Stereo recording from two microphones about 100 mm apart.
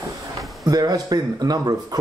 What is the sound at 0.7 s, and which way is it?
Speech, 40° right (ahead or behind).